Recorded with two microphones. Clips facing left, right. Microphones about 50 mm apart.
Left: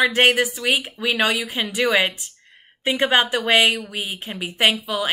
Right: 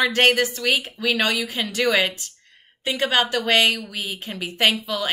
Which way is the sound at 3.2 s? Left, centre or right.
Centre.